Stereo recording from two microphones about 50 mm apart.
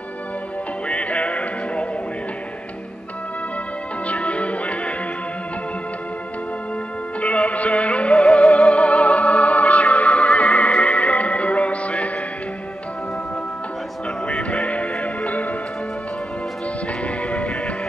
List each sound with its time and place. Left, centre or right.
0.8 s music: left
4.1 s music: left
7.2 s music: left
14.2 s music: left
17.0 s music: left